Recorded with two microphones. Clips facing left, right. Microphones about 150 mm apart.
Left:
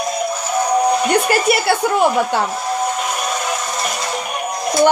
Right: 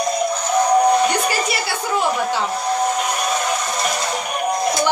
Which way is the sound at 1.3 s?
55° left (ahead or behind).